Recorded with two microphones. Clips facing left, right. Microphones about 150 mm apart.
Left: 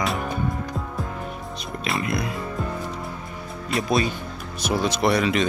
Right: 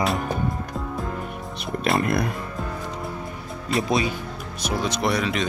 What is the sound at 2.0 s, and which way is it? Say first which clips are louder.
Speech: right 3 dB; 50° right (ahead or behind).